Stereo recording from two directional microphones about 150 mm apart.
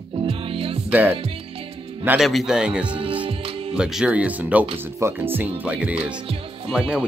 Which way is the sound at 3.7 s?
5° right (ahead or behind).